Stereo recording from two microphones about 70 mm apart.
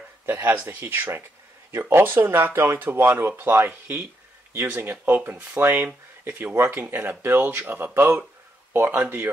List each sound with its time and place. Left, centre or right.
0.3 s speech: right